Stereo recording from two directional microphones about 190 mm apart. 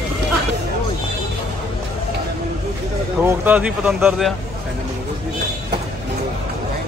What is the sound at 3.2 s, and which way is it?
Speech, 10° right (ahead or behind).